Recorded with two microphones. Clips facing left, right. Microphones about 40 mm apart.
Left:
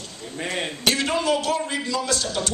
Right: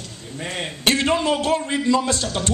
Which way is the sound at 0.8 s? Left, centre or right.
Right.